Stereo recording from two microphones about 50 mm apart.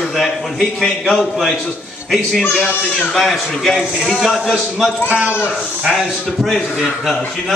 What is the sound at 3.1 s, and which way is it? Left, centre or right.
A man's voice, centre.